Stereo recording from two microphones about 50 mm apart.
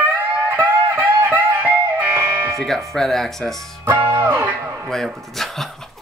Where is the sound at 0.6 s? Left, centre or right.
Right.